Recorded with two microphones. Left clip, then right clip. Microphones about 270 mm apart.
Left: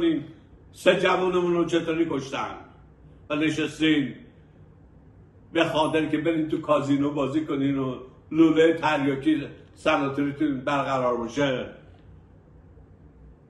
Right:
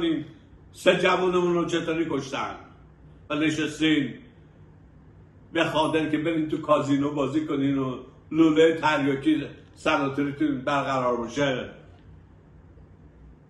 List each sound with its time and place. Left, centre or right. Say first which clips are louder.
0.0 s a man's voice: left 2 dB; centre
5.5 s a man's voice: left 1 dB; centre